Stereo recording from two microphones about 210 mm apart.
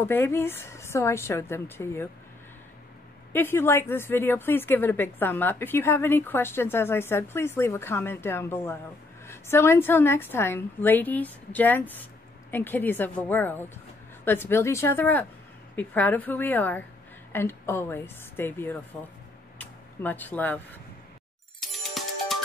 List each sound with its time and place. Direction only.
0.0 s a woman's voice: 10° left (ahead or behind)
3.3 s a woman's voice: 10° left (ahead or behind)
21.5 s music: centre (ahead or behind)